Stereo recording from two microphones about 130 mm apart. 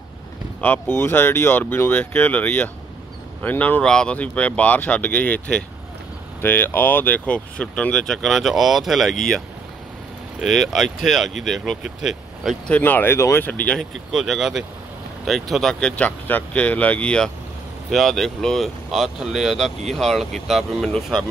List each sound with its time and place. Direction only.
0.6 s speech: 15° left (ahead or behind); by 9.1 s centre (ahead or behind)
10.4 s speech: centre (ahead or behind)
12.7 s speech: 15° left (ahead or behind)
14.1 s speech: centre (ahead or behind)